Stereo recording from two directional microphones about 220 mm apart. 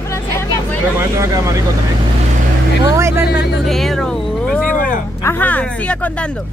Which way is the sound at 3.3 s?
50° left (ahead or behind).